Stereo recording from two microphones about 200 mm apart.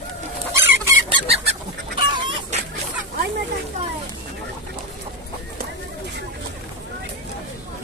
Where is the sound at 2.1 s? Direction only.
25° right (ahead or behind).